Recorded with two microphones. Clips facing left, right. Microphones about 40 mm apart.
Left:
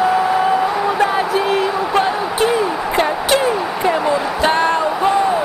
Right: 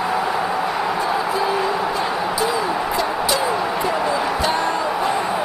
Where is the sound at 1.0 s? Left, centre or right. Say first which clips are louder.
Left 4 dB; left.